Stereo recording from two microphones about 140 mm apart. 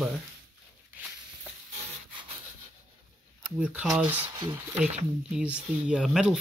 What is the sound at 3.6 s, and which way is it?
Speech, 10° right (ahead or behind).